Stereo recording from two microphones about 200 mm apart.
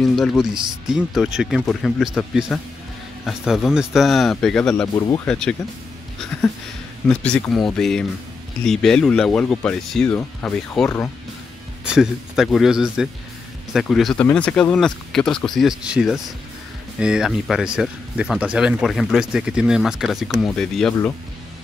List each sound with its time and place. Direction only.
0.0 s speech: centre (ahead or behind)
4.9 s speech: 20° left (ahead or behind)
5.2 s speech: 5° left (ahead or behind)
7.1 s speech: 5° left (ahead or behind)
11.8 s speech: 5° right (ahead or behind)